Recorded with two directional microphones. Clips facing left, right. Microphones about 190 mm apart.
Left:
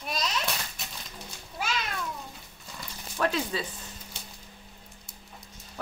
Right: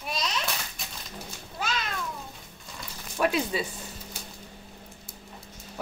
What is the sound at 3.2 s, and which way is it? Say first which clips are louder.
Speech: right 2 dB; 15° right (ahead or behind).